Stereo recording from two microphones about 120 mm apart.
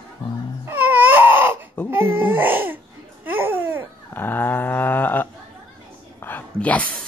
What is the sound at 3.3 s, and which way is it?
Babbling, 15° right (ahead or behind).